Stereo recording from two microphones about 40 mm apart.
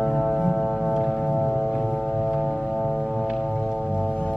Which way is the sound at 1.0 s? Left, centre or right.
Centre.